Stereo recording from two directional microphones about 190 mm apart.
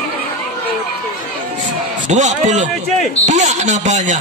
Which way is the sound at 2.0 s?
40° right (ahead or behind).